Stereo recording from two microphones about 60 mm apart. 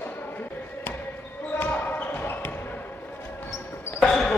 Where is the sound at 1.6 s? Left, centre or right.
Left.